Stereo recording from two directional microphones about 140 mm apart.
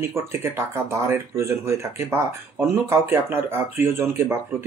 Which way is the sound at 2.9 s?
15° right (ahead or behind).